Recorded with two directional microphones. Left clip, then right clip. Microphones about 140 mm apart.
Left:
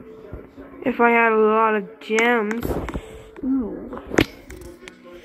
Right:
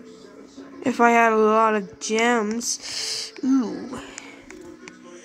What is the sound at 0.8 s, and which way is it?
Speech, 20° right (ahead or behind).